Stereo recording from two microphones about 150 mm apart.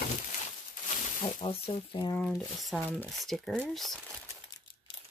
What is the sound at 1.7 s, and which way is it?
Speech, 35° left (ahead or behind).